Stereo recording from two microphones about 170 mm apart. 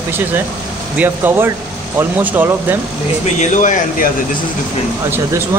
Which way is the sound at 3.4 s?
45° left (ahead or behind).